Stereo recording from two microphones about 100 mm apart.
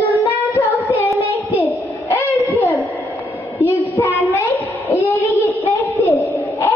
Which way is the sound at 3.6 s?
20° left (ahead or behind).